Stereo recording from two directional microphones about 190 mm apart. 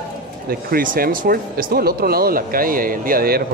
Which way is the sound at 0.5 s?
50° right (ahead or behind).